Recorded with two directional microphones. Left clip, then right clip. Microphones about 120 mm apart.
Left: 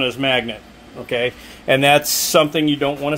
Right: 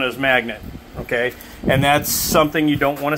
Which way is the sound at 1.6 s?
45° left (ahead or behind).